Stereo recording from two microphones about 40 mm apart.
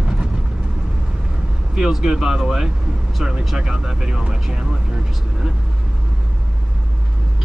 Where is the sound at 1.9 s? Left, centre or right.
Centre.